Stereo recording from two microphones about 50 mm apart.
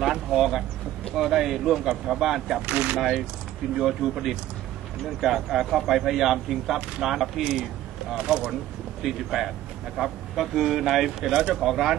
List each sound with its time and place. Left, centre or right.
0.0 s speech: centre
2.6 s speech: right
3.0 s speech: centre
8.1 s speech: centre
9.0 s speech: centre